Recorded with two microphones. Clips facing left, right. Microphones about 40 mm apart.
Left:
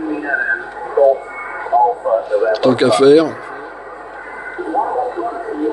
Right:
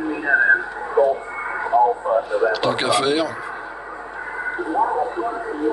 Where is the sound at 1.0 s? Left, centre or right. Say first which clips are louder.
Left 6 dB; right.